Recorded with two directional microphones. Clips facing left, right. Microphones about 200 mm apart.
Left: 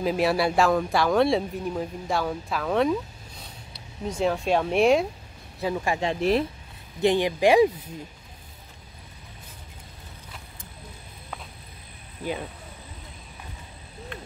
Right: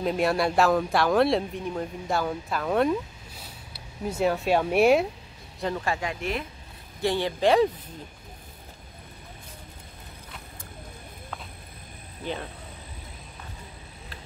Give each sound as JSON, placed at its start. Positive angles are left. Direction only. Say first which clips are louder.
{"t": 0.0, "sound": "speech", "louder": "left 1 dB", "side_deg": 0}
{"t": 5.6, "sound": "speech", "louder": "left 2 dB", "side_deg": 10}
{"t": 5.9, "sound": "speech", "louder": "left 8 dB", "side_deg": 30}
{"t": 7.0, "sound": "speech", "louder": "left 4 dB", "side_deg": 15}